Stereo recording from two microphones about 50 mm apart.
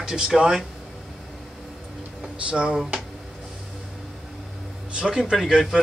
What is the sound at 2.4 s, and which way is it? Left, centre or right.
Speech, centre.